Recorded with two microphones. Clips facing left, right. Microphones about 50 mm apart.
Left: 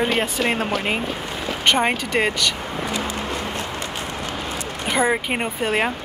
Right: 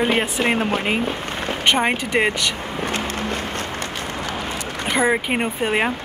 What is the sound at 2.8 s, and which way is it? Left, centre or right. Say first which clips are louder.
Vehicle: right 2 dB; right.